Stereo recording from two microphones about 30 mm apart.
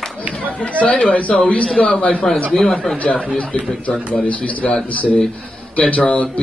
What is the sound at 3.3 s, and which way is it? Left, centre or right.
A man's voice, left.